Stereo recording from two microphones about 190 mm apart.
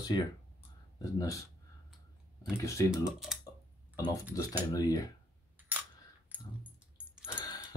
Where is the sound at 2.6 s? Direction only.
15° left (ahead or behind).